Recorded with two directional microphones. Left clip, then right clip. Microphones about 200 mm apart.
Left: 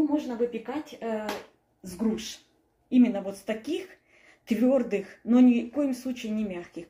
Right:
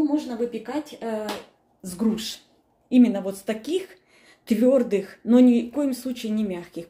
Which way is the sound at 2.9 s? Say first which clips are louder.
Right 4 dB; 15° right (ahead or behind).